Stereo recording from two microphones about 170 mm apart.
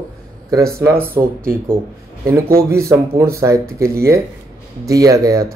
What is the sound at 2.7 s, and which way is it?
Speech, 15° right (ahead or behind).